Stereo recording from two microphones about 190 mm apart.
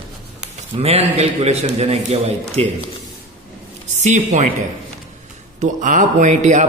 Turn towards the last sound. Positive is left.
turn(degrees=-40)  # may be behind; listen again after turning